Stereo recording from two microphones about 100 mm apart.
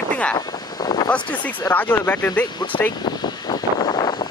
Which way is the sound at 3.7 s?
45° left (ahead or behind).